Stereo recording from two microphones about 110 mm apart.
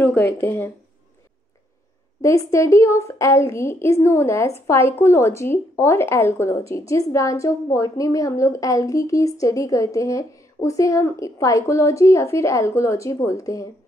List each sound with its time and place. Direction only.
0.0 s speech: 20° left (ahead or behind)
2.2 s speech: 25° left (ahead or behind)